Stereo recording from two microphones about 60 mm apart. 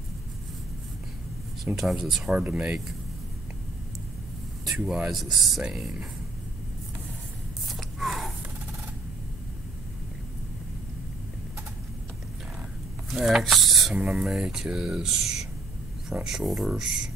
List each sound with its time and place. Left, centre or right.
1.8 s speech: centre
2.3 s speech: centre
4.6 s speech: centre
7.6 s a sound: centre
13.1 s speech: centre